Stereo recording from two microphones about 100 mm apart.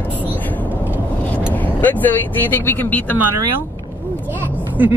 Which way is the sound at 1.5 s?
20° left (ahead or behind).